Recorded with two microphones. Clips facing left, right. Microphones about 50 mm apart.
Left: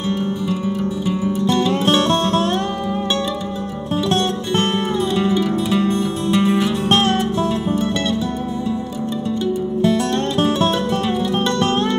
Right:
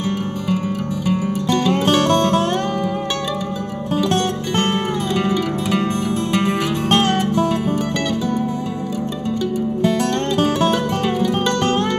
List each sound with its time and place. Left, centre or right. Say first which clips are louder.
0.7 s music: even; right
5.8 s music: left 1 dB; right